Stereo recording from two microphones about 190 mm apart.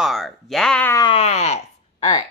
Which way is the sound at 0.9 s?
30° left (ahead or behind).